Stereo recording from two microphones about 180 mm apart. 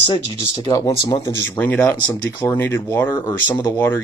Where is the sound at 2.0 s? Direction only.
25° left (ahead or behind).